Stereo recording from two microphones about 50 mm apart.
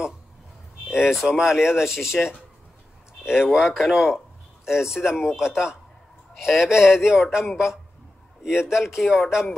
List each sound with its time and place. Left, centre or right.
0.8 s speech: centre